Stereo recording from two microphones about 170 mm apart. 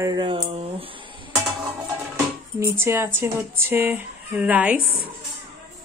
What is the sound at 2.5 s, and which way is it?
Speech, 15° right (ahead or behind).